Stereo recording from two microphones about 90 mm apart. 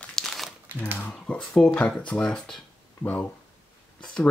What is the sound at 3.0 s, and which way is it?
Speech, 15° left (ahead or behind).